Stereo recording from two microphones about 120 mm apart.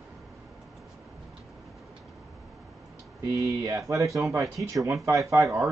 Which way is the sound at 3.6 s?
25° right (ahead or behind).